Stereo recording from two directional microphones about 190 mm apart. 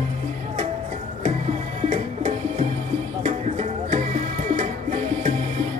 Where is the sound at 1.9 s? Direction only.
35° right (ahead or behind).